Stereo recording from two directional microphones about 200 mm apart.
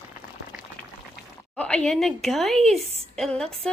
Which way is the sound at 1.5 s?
5° left (ahead or behind).